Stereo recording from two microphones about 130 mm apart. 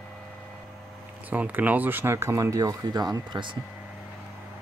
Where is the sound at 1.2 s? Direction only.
10° right (ahead or behind); by 3.6 s 35° right (ahead or behind).